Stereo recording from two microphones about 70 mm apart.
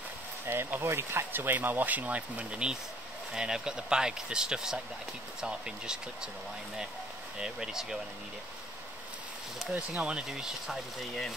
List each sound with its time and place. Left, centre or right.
0.7 s speech: right; by 2.7 s centre
3.3 s speech: centre
7.3 s speech: centre
9.7 s speech: centre